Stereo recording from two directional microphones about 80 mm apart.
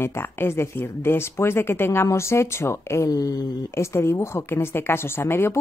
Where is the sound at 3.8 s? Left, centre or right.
Left.